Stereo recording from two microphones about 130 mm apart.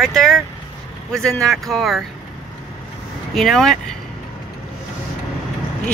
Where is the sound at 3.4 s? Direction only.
Centre (ahead or behind).